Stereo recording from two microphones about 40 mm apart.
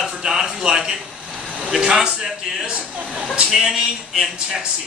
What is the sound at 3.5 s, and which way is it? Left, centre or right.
A man's voice, centre.